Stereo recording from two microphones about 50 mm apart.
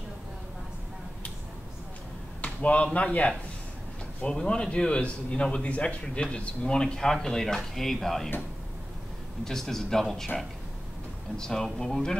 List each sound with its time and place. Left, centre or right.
2.4 s a man's voice: left; by 8.3 s centre
9.4 s speech: centre